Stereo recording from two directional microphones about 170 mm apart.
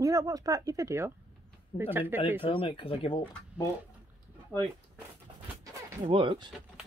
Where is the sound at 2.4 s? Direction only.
30° left (ahead or behind).